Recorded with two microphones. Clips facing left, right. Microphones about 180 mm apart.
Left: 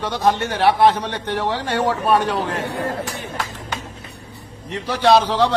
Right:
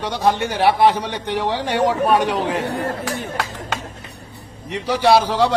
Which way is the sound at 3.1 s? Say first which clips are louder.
Right 3 dB; 75° right (ahead or behind).